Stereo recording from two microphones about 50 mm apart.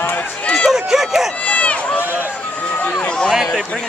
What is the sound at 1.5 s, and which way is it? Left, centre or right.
Run, left.